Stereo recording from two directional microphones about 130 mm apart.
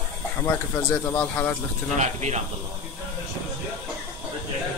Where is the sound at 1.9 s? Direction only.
60° right (ahead or behind).